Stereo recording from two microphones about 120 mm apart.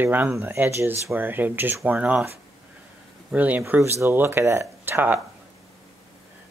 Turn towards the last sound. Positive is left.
turn(degrees=-15)  # may be behind; listen again after turning